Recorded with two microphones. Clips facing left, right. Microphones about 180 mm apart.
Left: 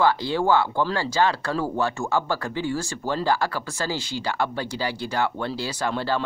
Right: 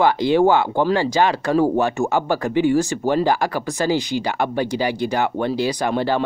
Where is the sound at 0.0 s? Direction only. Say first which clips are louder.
Right 6 dB; 20° right (ahead or behind).